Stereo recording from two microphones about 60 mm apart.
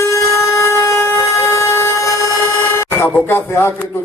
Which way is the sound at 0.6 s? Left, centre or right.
Left.